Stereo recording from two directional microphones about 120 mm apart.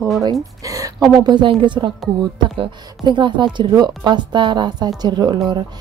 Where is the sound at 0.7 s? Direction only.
25° right (ahead or behind).